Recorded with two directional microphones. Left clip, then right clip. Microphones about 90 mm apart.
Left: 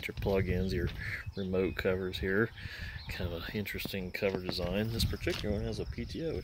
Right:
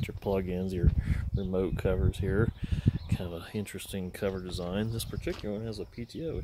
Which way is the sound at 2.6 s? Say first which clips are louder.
Right 5 dB; 35° right (ahead or behind).